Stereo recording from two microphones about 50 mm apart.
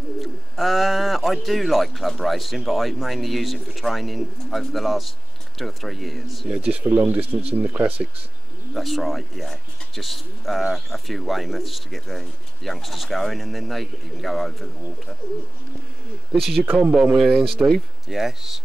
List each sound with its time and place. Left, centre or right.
0.2 s speech: centre
6.5 s speech: right
8.7 s speech: centre
16.3 s speech: centre
16.9 s speech: centre
17.2 s speech: centre